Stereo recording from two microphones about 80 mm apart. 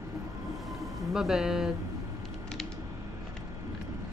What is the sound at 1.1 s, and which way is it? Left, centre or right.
Speech, centre.